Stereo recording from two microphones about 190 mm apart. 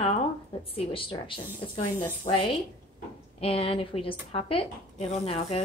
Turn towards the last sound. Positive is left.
turn(degrees=30)  # may be behind; listen again after turning